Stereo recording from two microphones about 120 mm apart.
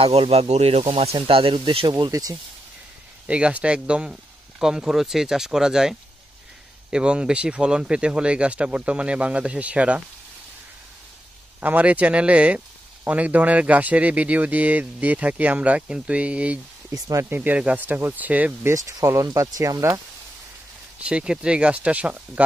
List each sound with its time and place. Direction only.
0.0 s speech: 55° right (ahead or behind); by 2.3 s 30° right (ahead or behind)
3.3 s speech: 10° right (ahead or behind)
11.6 s speech: 15° right (ahead or behind)
16.9 s speech: 25° right (ahead or behind)
17.4 s speech: 10° right (ahead or behind)
18.7 s speech: 25° right (ahead or behind)
21.0 s speech: 10° right (ahead or behind)